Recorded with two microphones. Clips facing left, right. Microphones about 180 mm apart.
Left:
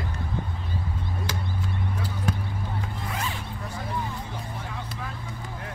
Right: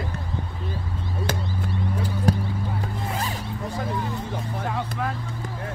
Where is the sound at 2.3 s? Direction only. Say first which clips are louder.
Right 7 dB; 35° right (ahead or behind).